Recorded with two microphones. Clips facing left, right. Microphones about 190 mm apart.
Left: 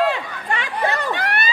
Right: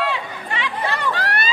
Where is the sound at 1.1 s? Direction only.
20° left (ahead or behind).